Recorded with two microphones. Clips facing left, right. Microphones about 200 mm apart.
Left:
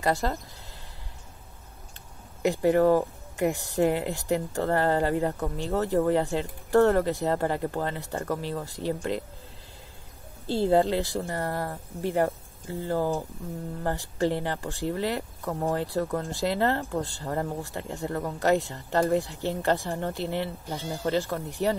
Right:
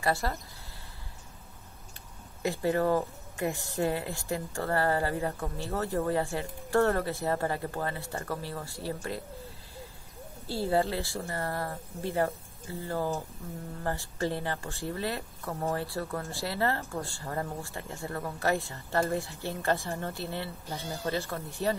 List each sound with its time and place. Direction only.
0.0 s speech: 20° left (ahead or behind)
2.4 s speech: 15° left (ahead or behind)
10.4 s speech: 20° left (ahead or behind)